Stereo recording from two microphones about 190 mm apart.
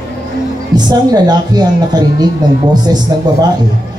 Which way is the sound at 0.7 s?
20° right (ahead or behind).